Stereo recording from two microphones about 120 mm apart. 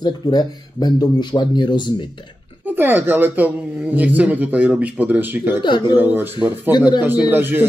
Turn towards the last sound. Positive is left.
turn(degrees=-15)  # may be behind; listen again after turning